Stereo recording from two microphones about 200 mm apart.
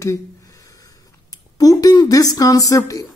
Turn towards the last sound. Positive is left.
turn(degrees=15)  # may be behind; listen again after turning